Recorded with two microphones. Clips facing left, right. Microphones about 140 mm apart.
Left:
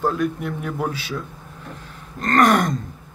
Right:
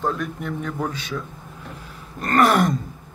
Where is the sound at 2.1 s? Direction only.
10° right (ahead or behind).